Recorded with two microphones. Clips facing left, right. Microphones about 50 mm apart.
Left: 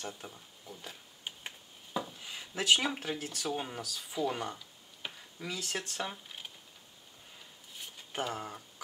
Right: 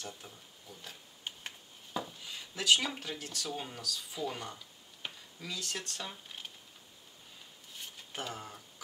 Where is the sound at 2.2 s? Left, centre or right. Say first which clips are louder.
Left 3 dB; centre.